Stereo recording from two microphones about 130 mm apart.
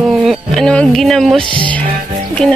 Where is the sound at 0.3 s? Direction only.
5° left (ahead or behind).